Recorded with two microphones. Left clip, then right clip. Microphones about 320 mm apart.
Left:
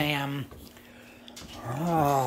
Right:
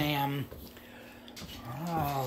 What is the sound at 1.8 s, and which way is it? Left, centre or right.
Speech, left.